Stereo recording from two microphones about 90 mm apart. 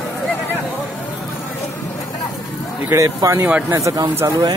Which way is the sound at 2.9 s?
35° right (ahead or behind).